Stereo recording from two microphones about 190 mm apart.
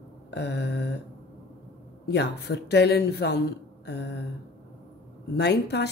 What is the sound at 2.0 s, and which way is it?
Speech, 60° left (ahead or behind).